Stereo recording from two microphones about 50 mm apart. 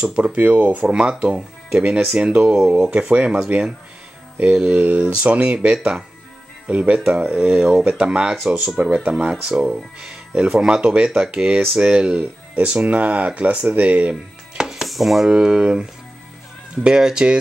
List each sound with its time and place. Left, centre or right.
0.0 s speech: right
14.6 s chopping: centre
14.9 s speech: centre
15.2 s speech: centre